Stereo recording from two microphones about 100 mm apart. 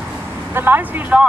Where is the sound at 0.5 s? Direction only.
20° right (ahead or behind).